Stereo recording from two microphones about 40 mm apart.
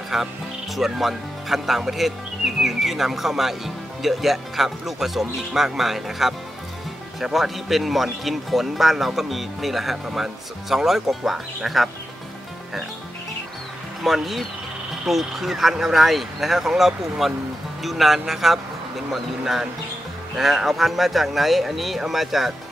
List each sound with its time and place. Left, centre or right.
0.1 s speech: centre
7.3 s speech: centre
14.0 s speech: centre